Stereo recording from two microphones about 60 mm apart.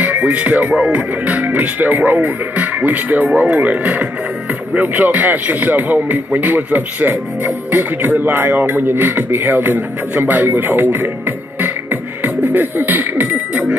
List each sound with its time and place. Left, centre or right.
0.0 s music: right
4.7 s speech: right